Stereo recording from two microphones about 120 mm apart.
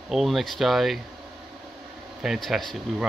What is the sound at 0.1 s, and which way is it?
Speech, centre (ahead or behind).